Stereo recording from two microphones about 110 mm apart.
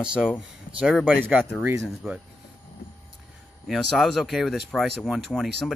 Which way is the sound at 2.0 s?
20° right (ahead or behind).